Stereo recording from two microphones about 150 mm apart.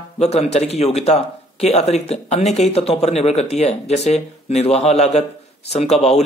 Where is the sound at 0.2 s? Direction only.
45° left (ahead or behind).